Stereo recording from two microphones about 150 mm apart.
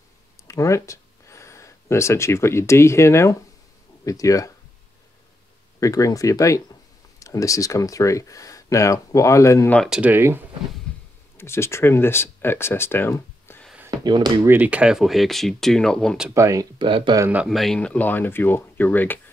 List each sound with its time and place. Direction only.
0.5 s speech: 20° left (ahead or behind)
5.8 s speech: 20° left (ahead or behind)
9.8 s speech: 5° right (ahead or behind)
10.1 s speech: 15° right (ahead or behind)
11.3 s speech: 15° left (ahead or behind)
13.8 s speech: 30° right (ahead or behind)
14.4 s speech: 10° right (ahead or behind); by 16.3 s 5° left (ahead or behind)
16.3 s speech: 20° right (ahead or behind)
16.7 s speech: 35° right (ahead or behind)
17.2 s speech: 10° right (ahead or behind)
17.5 s speech: centre (ahead or behind)